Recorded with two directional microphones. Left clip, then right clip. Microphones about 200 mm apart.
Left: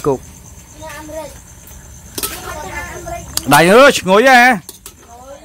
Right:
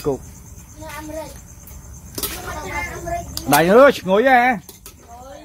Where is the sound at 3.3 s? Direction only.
35° left (ahead or behind).